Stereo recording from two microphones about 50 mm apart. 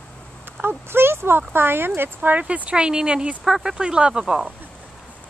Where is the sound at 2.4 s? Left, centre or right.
Right.